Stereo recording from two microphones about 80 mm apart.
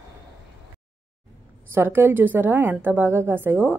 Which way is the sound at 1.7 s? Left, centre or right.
Right.